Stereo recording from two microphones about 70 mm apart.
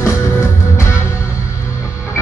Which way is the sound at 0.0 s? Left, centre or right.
Left.